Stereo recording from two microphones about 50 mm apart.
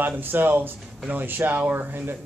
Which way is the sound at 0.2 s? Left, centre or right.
Right.